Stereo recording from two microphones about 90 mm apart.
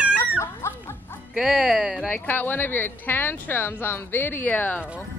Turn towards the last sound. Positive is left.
turn(degrees=20)  # may be behind; listen again after turning